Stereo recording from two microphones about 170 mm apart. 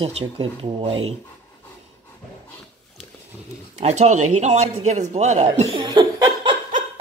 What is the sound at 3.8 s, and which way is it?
A man's voice, 40° right (ahead or behind).